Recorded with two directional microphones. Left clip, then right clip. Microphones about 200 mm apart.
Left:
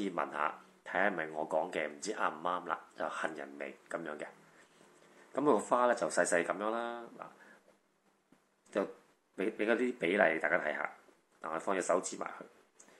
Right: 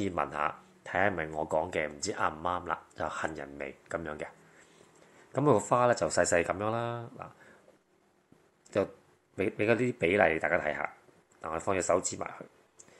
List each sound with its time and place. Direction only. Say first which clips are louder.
0.0 s speech: right 4 dB; 30° right (ahead or behind)
5.3 s speech: right 4 dB; 30° right (ahead or behind)
8.7 s speech: right 5 dB; 25° right (ahead or behind)